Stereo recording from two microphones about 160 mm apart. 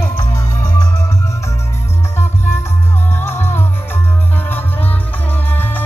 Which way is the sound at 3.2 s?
15° left (ahead or behind).